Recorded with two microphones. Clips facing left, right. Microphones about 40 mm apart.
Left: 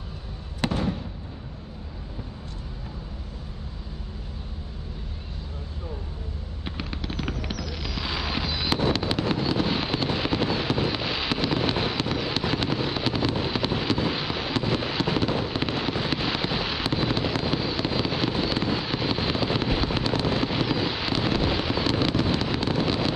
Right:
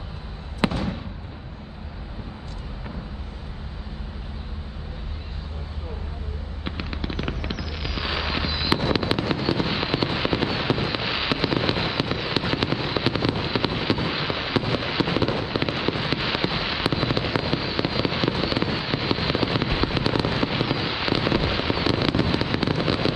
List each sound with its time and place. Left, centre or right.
0.6 s fireworks: right
6.6 s fireworks: centre